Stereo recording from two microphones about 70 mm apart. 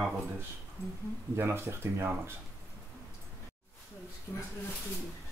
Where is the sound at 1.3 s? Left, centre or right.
Right.